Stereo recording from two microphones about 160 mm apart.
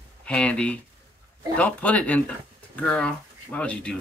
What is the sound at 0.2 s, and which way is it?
Speech, 5° left (ahead or behind).